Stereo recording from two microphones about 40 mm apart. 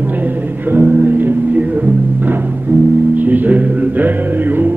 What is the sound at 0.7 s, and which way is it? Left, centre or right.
Music, right.